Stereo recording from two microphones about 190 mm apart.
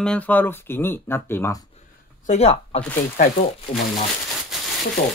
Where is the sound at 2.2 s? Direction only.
35° left (ahead or behind).